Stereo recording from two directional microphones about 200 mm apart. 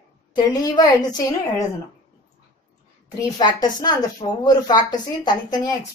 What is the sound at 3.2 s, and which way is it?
A woman's voice, 20° left (ahead or behind).